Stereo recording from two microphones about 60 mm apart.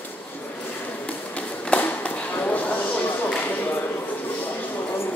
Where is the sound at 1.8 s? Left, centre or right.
Left.